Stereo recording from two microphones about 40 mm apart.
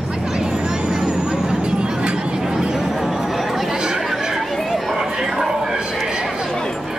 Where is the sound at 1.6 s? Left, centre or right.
Right.